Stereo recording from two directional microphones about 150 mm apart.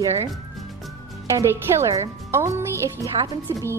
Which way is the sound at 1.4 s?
20° right (ahead or behind).